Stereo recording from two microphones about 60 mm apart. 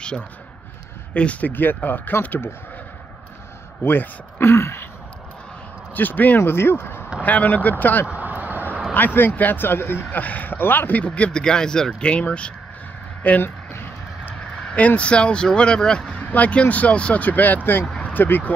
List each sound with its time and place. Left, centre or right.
1.1 s speech: left
3.8 s speech: left
5.9 s speech: left
6.4 s speech: left
7.2 s speech: left
8.1 s vehicle: right
8.9 s speech: left
10.2 s speech: left
13.4 s a sound: left
14.7 s speech: left